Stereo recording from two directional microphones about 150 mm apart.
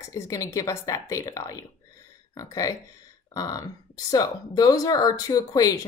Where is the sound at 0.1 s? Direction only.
20° left (ahead or behind).